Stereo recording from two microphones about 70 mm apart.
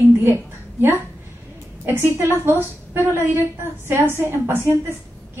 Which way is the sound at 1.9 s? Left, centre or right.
Right.